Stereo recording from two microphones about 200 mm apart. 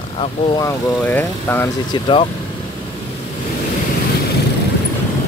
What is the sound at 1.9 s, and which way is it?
Speech, 25° left (ahead or behind).